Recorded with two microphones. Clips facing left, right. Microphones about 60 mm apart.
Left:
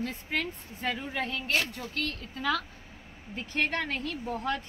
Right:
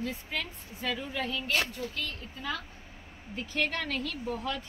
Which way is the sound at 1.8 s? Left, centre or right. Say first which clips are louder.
Left 2 dB; left.